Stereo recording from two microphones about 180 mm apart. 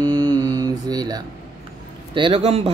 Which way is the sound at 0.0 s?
20° right (ahead or behind).